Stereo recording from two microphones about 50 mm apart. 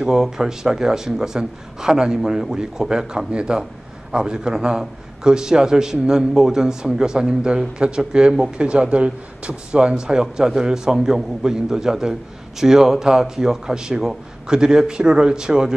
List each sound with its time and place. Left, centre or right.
0.0 s a man's voice: centre